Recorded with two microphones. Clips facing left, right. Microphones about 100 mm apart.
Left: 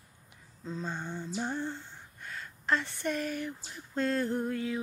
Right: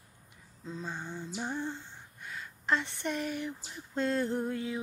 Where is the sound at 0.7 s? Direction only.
5° right (ahead or behind).